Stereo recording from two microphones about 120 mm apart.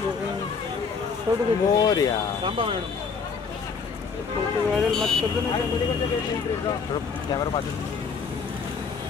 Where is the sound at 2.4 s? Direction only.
45° right (ahead or behind).